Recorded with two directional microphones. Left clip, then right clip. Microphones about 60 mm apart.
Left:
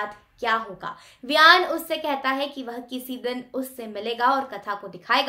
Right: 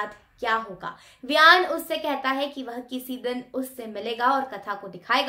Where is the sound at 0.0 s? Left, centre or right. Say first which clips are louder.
Left 1 dB; left.